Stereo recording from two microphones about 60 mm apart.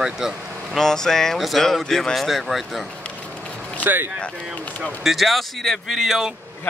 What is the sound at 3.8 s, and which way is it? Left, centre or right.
Speech, right.